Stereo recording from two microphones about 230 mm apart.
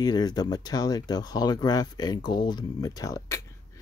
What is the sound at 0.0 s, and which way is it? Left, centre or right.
Speech, centre.